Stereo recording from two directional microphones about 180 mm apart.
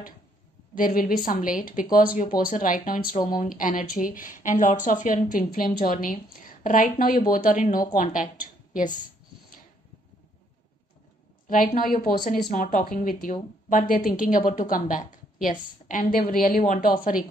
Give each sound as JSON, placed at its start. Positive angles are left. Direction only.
{"t": 0.7, "sound": "a woman's voice", "side_deg": 50}
{"t": 11.4, "sound": "a woman's voice", "side_deg": 50}